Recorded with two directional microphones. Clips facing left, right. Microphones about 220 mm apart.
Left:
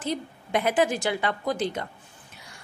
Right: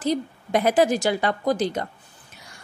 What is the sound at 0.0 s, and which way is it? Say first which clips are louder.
A woman's voice: right 6 dB; 40° right (ahead or behind).